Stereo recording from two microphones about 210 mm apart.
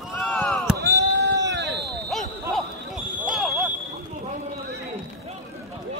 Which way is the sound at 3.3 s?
Centre (ahead or behind).